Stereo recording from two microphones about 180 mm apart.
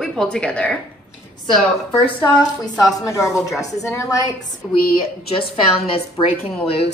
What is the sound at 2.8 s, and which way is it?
A woman's voice, 20° left (ahead or behind).